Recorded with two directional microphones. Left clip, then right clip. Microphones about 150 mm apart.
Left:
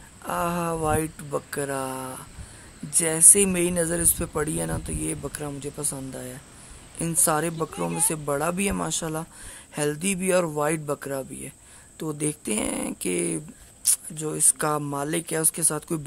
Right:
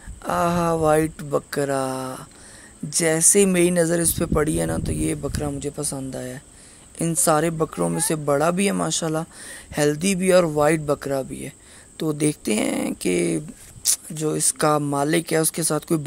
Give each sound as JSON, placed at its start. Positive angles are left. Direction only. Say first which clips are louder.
{"t": 0.2, "sound": "speech", "louder": "right 5 dB", "side_deg": -20}